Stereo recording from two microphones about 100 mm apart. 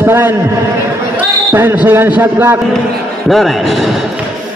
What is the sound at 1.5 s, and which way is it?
A man's voice, 25° right (ahead or behind).